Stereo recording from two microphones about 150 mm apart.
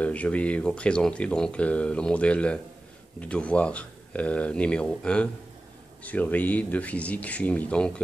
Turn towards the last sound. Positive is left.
turn(degrees=5)  # may be behind; listen again after turning